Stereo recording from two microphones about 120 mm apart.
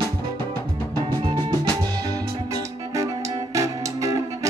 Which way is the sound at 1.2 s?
40° right (ahead or behind).